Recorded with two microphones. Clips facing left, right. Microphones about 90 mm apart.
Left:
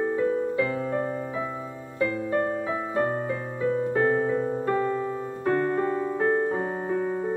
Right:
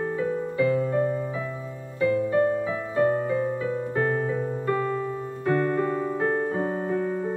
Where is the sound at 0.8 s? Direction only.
40° left (ahead or behind).